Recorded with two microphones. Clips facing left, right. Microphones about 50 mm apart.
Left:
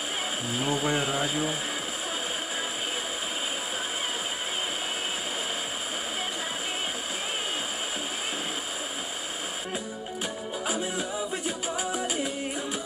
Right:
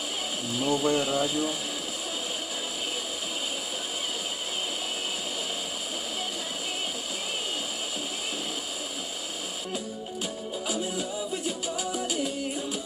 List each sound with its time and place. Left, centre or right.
0.6 s speech: left
10.7 s music: left